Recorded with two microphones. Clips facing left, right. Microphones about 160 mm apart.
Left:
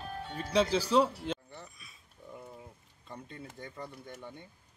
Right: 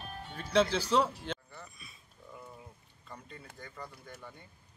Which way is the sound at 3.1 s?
25° left (ahead or behind).